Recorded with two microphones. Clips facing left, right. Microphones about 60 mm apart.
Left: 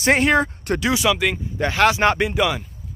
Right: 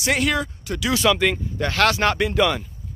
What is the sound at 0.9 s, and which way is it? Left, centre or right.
Speech, centre.